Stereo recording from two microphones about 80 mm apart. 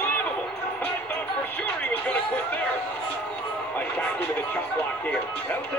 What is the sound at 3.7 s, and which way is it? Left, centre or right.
Music, centre.